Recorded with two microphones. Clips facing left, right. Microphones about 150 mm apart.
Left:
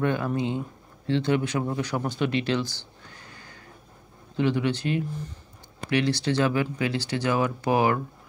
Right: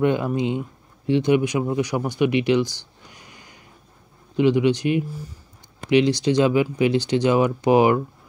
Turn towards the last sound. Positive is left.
turn(degrees=-20)  # may be behind; listen again after turning